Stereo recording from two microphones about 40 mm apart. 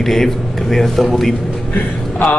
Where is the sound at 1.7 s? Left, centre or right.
Left.